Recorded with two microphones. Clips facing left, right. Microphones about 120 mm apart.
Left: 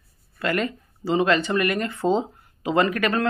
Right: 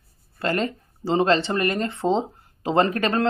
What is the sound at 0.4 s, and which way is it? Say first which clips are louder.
Speech: even; 30° right (ahead or behind).